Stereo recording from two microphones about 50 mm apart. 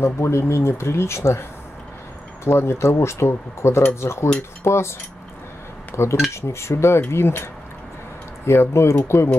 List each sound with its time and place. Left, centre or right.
0.0 s speech: left
2.4 s speech: left
5.9 s speech: left
6.3 s speech: left
8.5 s speech: left